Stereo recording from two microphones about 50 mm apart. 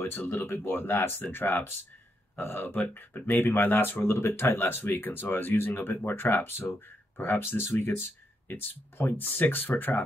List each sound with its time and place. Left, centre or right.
0.2 s speech: left
4.0 s speech: left